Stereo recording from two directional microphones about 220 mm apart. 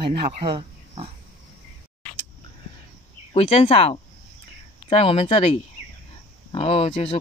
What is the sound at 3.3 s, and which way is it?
Speech, 25° left (ahead or behind).